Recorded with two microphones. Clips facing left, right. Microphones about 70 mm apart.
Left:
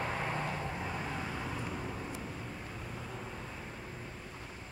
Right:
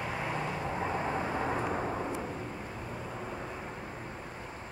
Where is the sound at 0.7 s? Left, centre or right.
Right.